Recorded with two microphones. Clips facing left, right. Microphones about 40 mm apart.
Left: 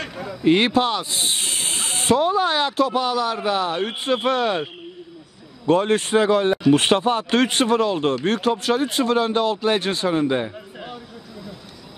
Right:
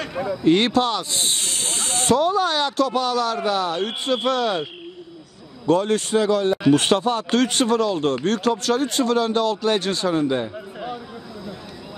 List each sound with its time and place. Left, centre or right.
0.4 s speech: centre
5.7 s speech: left
10.5 s a sound: centre